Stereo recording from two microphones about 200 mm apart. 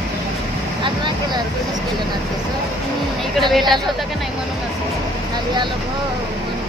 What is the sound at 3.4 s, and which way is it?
Speech, centre (ahead or behind).